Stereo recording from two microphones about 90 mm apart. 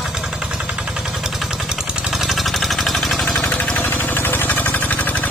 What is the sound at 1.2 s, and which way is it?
Vehicle, 5° right (ahead or behind).